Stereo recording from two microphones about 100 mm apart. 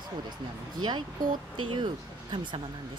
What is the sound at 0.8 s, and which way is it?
Speech, 50° right (ahead or behind).